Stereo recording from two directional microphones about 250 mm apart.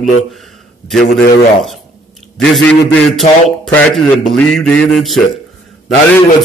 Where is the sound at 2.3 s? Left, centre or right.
Centre.